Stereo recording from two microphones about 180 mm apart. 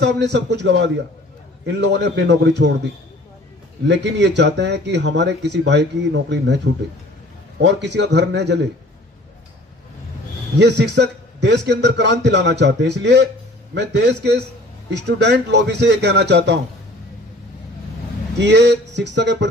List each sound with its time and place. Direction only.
0.0 s a man's voice: 75° right (ahead or behind)
3.8 s speech: 75° right (ahead or behind)
10.6 s speech: 70° right (ahead or behind)
18.4 s speech: 75° right (ahead or behind)